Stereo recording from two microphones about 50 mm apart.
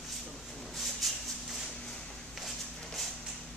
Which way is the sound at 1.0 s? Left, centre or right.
Centre.